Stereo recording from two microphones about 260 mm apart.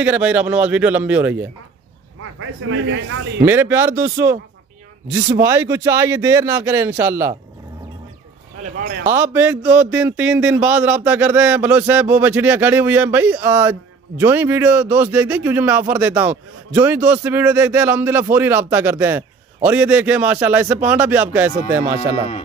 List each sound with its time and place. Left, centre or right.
0.0 s speech: centre
2.3 s a man's voice: right
3.4 s speech: centre
8.6 s speech: right
9.1 s speech: centre